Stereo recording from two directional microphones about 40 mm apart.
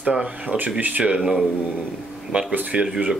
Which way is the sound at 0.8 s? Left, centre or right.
Right.